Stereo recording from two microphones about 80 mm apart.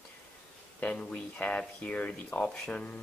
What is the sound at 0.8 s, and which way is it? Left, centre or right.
Speech, centre.